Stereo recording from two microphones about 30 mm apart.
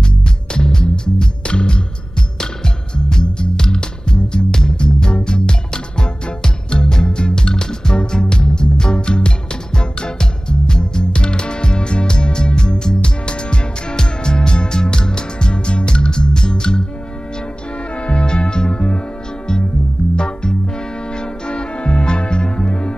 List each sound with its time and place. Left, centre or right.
0.6 s music: left
3.1 s music: left
18.0 s music: left
20.2 s music: left